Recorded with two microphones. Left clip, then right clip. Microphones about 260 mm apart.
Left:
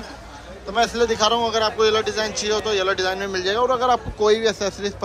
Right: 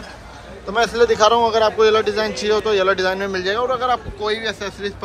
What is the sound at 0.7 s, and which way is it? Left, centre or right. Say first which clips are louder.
A man's voice: right 4 dB; centre.